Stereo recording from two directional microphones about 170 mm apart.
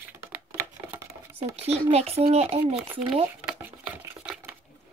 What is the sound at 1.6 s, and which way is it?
A child's voice, 40° right (ahead or behind).